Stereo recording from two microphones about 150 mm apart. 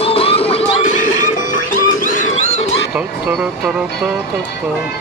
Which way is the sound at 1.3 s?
60° left (ahead or behind).